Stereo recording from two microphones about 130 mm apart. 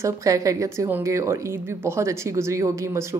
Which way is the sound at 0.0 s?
25° right (ahead or behind).